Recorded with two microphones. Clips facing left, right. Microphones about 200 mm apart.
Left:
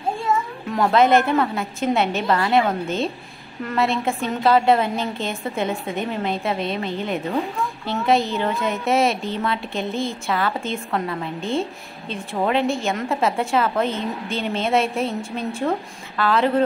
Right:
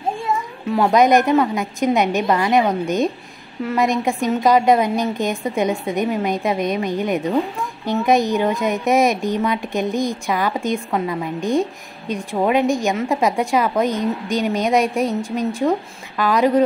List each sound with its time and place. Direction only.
0.7 s a woman's voice: 5° right (ahead or behind)